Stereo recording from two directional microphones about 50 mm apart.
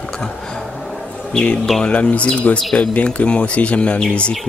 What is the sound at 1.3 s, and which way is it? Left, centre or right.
Speech, left.